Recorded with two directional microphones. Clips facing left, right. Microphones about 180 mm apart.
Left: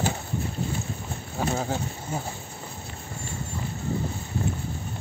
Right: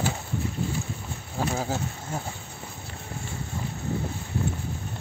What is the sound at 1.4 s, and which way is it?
Speech, centre (ahead or behind).